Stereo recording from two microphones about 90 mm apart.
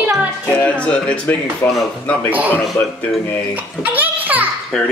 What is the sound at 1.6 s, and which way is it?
Speech, 25° left (ahead or behind).